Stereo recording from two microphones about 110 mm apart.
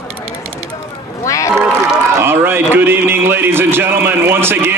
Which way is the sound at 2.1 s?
20° right (ahead or behind).